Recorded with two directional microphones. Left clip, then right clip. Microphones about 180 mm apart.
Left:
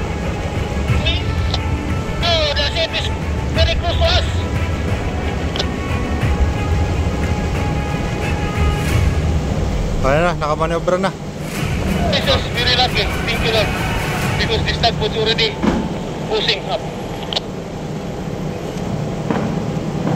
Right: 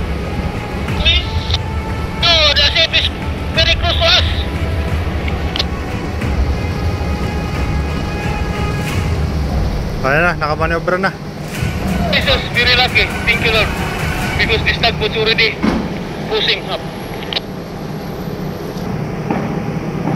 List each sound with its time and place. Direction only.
1.0 s music: 15° right (ahead or behind)
2.2 s vehicle: 15° right (ahead or behind)
10.0 s a man's voice: 5° left (ahead or behind)
12.1 s vehicle: 15° right (ahead or behind)
14.4 s speech: 15° right (ahead or behind)